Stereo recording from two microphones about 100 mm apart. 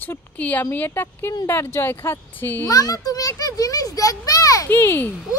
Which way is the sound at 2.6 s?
35° left (ahead or behind).